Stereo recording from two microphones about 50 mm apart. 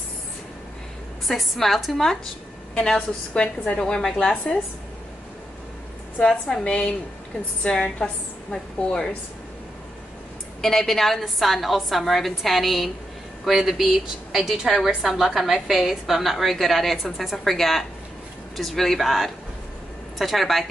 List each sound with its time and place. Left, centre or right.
1.2 s a woman's voice: centre
2.7 s a woman's voice: centre
6.2 s a woman's voice: centre
8.0 s a woman's voice: centre
10.6 s a woman's voice: centre